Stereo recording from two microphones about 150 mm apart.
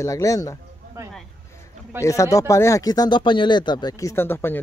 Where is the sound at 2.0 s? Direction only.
20° left (ahead or behind).